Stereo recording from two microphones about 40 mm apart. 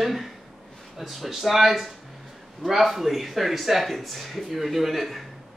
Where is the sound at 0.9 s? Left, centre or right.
Centre.